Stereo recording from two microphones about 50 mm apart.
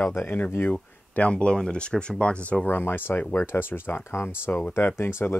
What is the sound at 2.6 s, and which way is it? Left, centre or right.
Speech, left.